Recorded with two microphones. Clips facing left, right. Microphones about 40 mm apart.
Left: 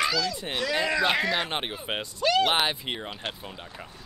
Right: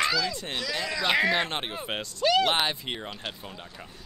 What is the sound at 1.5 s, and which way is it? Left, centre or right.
A man's voice, centre.